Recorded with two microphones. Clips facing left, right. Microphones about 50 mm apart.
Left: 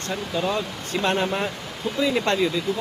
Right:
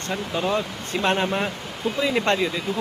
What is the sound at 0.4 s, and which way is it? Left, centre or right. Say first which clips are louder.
Speech: right 1 dB; centre.